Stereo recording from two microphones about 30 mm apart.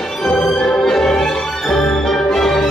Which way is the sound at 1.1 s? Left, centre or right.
Centre.